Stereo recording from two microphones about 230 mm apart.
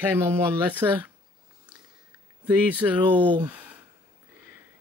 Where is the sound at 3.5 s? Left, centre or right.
Centre.